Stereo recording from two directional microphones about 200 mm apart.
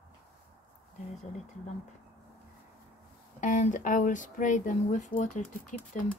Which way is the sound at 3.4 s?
35° left (ahead or behind).